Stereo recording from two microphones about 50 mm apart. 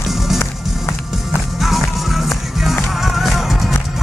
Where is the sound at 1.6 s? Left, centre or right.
Centre.